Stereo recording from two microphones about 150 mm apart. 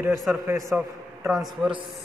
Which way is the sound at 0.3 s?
20° right (ahead or behind).